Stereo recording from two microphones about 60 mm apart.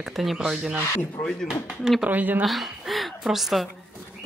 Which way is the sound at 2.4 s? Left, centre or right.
Centre.